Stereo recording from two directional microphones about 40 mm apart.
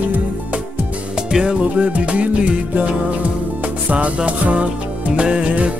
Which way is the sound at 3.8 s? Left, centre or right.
Right.